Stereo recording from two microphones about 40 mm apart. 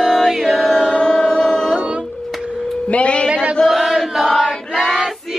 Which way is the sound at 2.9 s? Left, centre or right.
Left.